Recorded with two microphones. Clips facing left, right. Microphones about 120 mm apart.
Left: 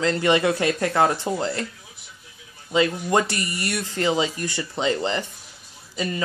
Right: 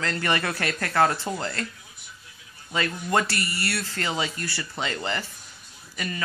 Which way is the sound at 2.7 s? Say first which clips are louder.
Left 5 dB; 20° left (ahead or behind).